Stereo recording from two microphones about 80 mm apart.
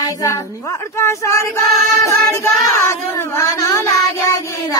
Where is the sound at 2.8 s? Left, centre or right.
Left.